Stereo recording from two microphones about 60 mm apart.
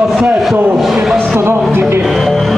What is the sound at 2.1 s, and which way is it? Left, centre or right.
Music, centre.